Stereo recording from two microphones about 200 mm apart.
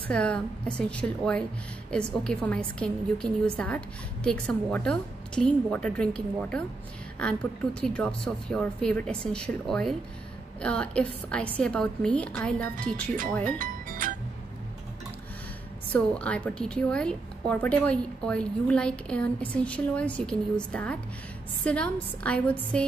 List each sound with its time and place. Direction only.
0.1 s a woman's voice: 5° left (ahead or behind)
7.8 s a woman's voice: 5° left (ahead or behind)
13.6 s music: 45° right (ahead or behind)
15.9 s a woman's voice: 5° left (ahead or behind)